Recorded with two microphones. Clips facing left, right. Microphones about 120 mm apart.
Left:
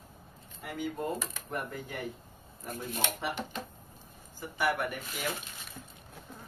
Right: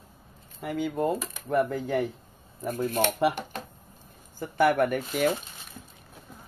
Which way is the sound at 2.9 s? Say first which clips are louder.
Right 10 dB; 60° right (ahead or behind).